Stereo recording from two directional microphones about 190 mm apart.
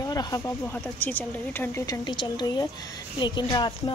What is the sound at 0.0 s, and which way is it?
Speech, 20° left (ahead or behind).